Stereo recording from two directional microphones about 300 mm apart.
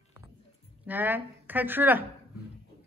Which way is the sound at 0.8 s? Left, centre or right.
Centre.